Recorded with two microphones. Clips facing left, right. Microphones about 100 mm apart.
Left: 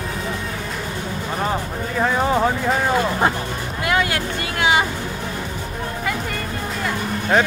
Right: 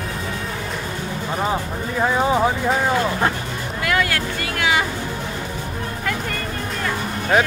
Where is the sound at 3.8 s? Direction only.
25° left (ahead or behind).